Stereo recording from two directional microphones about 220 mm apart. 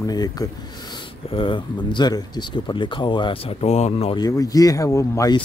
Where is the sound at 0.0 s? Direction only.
15° left (ahead or behind).